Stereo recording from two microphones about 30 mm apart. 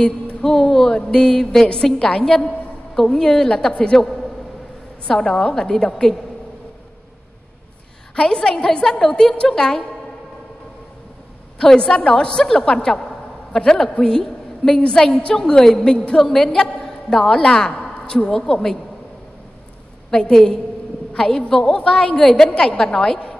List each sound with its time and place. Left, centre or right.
0.0 s speech: centre
1.0 s a woman's voice: left
3.3 s a woman's voice: left
8.2 s a woman's voice: left
11.6 s a woman's voice: left
14.9 s a woman's voice: left
15.3 s a woman's voice: centre
16.4 s a woman's voice: left
16.8 s a sound: left
18.3 s a woman's voice: centre
20.1 s a woman's voice: centre
21.7 s a woman's voice: left
22.2 s a woman's voice: centre
22.6 s a woman's voice: left